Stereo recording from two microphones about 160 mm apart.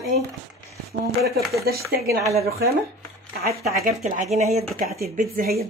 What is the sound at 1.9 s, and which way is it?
Speech, 70° right (ahead or behind).